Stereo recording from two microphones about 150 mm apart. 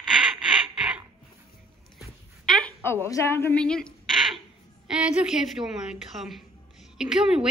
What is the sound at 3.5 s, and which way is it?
Speech, 5° left (ahead or behind).